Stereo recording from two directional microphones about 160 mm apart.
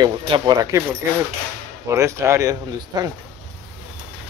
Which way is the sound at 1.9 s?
15° right (ahead or behind).